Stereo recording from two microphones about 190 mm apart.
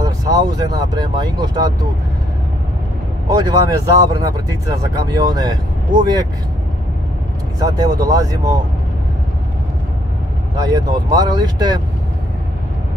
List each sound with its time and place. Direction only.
0.3 s speech: 20° right (ahead or behind)
3.3 s speech: 20° right (ahead or behind)
7.5 s speech: 20° right (ahead or behind)
10.5 s speech: 20° right (ahead or behind)